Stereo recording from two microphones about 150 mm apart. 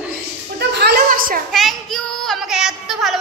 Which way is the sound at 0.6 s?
90° right.